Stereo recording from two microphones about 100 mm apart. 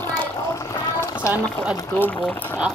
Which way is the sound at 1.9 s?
20° left (ahead or behind).